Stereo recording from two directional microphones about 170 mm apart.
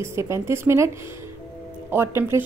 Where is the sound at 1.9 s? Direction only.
15° right (ahead or behind).